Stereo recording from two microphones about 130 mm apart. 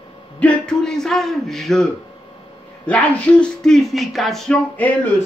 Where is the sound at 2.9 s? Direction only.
10° left (ahead or behind).